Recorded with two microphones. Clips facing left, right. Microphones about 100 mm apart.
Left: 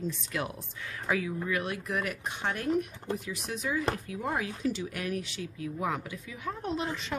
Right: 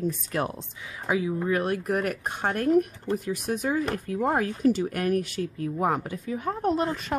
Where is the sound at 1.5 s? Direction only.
45° right (ahead or behind).